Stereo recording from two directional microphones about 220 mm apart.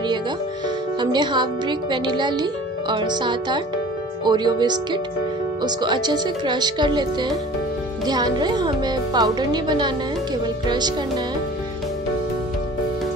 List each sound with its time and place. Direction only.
0.9 s speech: 20° right (ahead or behind)